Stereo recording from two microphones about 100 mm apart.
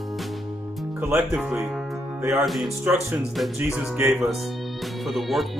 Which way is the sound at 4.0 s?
25° right (ahead or behind).